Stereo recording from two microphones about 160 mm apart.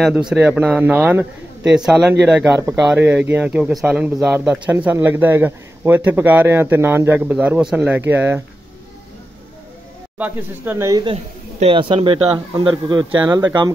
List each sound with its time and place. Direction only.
0.0 s speech: 5° right (ahead or behind)
10.1 s speech: 10° right (ahead or behind)
11.6 s speech: 35° right (ahead or behind)